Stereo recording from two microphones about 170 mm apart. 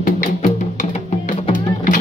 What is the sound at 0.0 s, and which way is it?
Music, 60° left (ahead or behind).